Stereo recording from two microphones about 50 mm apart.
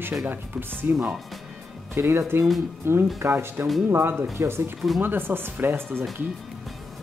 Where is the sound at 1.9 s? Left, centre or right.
Right.